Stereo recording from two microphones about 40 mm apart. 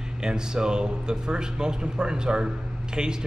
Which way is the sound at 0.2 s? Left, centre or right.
Centre.